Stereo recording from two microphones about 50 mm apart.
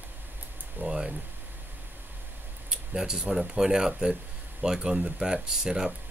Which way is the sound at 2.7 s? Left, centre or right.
Centre.